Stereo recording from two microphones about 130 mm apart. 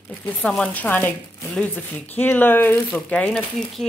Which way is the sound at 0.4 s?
5° left (ahead or behind).